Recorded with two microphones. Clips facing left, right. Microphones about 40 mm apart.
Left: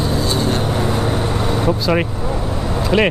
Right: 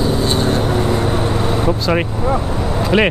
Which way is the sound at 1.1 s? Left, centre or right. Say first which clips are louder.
Right 2 dB; centre.